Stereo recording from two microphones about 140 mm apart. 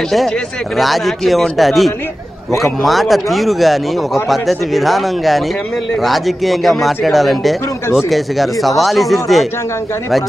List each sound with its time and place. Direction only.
0.7 s a man's voice: centre (ahead or behind)